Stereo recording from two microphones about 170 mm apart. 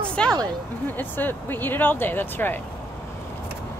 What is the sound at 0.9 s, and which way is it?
Speech, 10° left (ahead or behind).